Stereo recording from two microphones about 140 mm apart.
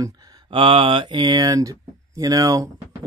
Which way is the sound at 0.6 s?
40° right (ahead or behind).